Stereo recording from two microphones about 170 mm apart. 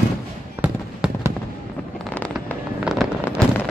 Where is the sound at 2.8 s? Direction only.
5° right (ahead or behind).